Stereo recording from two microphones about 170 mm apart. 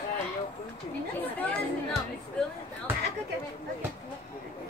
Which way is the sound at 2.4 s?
5° left (ahead or behind).